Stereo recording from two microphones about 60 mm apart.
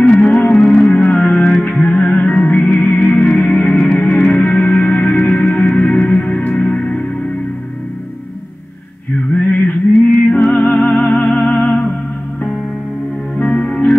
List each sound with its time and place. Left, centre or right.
0.6 s music: centre
0.8 s music: left
9.3 s music: left
13.4 s music: centre